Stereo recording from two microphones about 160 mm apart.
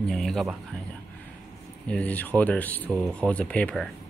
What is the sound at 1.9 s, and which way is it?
Speech, 10° left (ahead or behind).